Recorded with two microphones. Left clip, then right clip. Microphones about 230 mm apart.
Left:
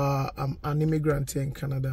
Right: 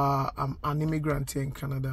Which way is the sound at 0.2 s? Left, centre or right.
Right.